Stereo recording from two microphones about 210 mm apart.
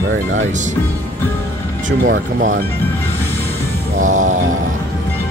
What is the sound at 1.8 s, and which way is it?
Speech, 40° right (ahead or behind).